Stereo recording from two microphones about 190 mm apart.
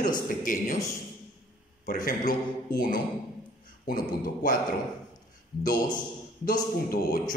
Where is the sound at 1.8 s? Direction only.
45° left (ahead or behind).